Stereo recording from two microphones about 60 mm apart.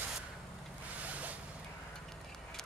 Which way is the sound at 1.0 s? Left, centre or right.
Right.